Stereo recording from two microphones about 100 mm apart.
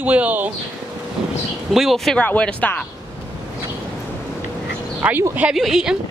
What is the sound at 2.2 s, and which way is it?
Speech, 15° left (ahead or behind).